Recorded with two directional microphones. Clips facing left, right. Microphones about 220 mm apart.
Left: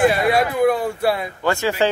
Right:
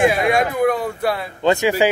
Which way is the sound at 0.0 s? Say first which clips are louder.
Even; centre (ahead or behind).